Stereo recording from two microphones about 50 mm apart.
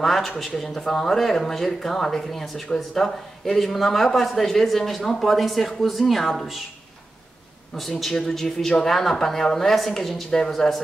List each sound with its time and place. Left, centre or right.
0.0 s speech: centre
7.7 s speech: centre